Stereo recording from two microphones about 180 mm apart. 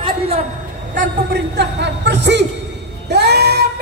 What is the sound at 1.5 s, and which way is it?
Speech, 70° right (ahead or behind).